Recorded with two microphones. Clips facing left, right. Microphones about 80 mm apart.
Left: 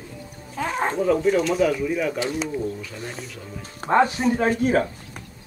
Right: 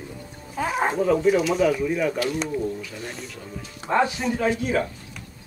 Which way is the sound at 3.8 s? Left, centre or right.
Left.